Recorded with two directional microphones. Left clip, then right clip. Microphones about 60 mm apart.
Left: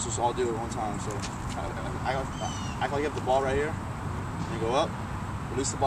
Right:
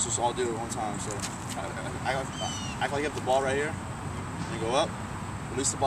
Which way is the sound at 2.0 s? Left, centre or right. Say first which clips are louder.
Even; centre.